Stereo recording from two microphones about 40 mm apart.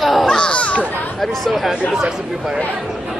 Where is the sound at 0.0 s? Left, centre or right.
Centre.